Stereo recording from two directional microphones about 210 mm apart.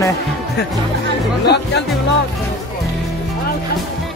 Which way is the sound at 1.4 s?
55° left (ahead or behind).